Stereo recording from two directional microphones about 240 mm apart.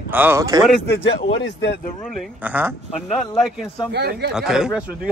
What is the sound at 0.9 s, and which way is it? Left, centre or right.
Speech, left.